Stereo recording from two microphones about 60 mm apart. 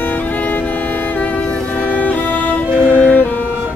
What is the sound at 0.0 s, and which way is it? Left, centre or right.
Music, left.